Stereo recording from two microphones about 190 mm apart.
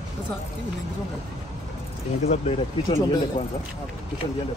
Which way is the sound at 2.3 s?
35° left (ahead or behind).